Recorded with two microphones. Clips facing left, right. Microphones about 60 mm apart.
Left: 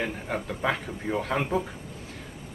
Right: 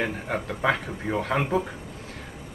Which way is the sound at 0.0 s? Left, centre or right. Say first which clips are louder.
Right 2 dB; centre.